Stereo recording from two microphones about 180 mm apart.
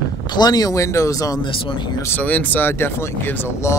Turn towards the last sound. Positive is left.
turn(degrees=15)  # may be behind; listen again after turning